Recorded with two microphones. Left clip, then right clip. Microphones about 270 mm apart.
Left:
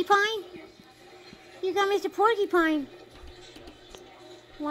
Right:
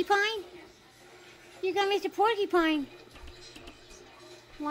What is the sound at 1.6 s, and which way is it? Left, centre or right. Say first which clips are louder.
Speech: left 2 dB; centre.